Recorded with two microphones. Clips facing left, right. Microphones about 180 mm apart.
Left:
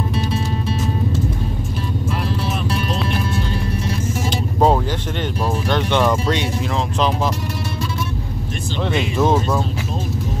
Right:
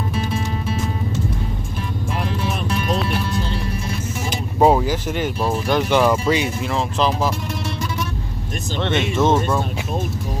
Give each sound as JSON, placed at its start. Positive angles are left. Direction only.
{"t": 4.3, "sound": "speech", "side_deg": -10}
{"t": 8.8, "sound": "speech", "side_deg": 0}